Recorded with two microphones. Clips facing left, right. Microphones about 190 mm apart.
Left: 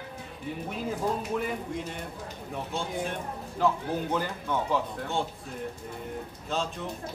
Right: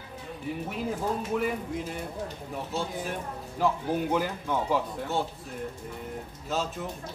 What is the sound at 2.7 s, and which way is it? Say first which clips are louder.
Speech: even; 5° right (ahead or behind).